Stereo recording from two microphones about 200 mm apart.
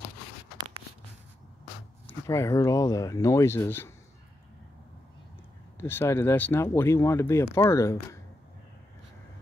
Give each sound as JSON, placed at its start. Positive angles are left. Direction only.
{"t": 2.0, "sound": "speech", "side_deg": 15}
{"t": 5.8, "sound": "speech", "side_deg": 10}